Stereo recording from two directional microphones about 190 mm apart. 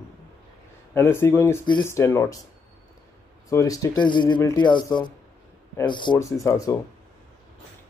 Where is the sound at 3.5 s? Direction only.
15° left (ahead or behind).